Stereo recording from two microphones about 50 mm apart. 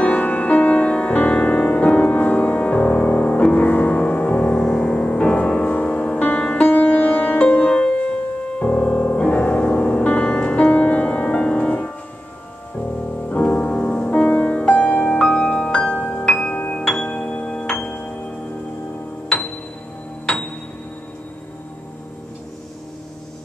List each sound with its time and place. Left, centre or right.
0.0 s music: left
13.3 s music: left
16.5 s music: left
16.9 s music: centre
17.7 s music: left